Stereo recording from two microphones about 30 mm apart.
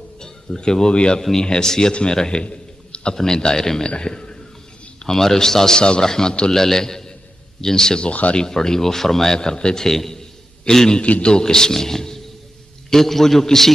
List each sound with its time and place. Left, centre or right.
0.6 s speech: left
2.4 s a sound: left
3.3 s speech: left
4.1 s a sound: left
5.0 s a man's voice: centre
5.8 s a man's voice: left
9.8 s a man's voice: centre
10.7 s a man's voice: left
11.2 s a man's voice: left